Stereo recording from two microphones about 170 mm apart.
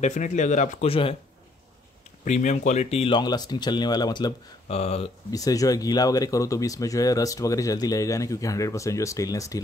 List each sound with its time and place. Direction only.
0.0 s speech: 45° left (ahead or behind)
2.2 s speech: 45° left (ahead or behind); by 4.3 s 25° left (ahead or behind)
4.6 s speech: 35° left (ahead or behind)
5.3 s speech: 20° left (ahead or behind)